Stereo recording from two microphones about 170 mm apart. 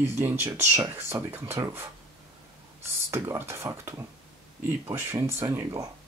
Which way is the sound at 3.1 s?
15° right (ahead or behind).